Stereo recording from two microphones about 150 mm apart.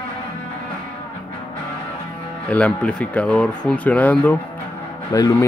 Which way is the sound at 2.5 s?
10° left (ahead or behind).